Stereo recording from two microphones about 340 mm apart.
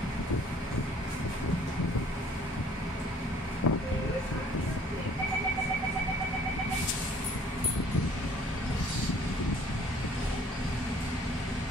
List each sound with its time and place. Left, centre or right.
3.6 s vehicle: left